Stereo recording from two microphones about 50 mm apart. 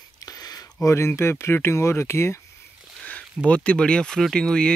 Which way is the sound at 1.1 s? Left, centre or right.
Left.